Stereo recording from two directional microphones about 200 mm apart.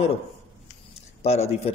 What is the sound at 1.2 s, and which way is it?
Speech, 30° left (ahead or behind).